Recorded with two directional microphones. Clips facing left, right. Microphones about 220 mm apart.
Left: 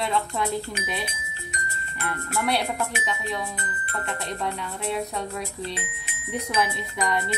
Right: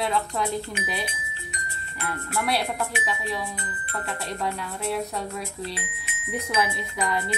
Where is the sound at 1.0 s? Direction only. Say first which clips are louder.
Even; 45° left (ahead or behind).